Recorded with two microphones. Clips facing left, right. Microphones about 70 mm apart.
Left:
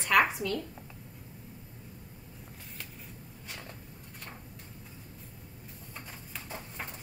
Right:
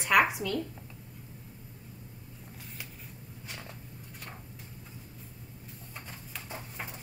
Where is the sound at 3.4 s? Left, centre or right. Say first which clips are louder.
Even; centre.